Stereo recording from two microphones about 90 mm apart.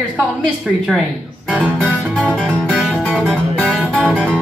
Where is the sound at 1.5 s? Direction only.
15° right (ahead or behind).